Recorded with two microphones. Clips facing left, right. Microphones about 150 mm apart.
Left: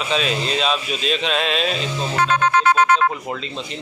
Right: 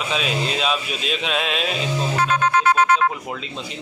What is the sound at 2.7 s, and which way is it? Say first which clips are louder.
Speech: left 1 dB; 75° left (ahead or behind).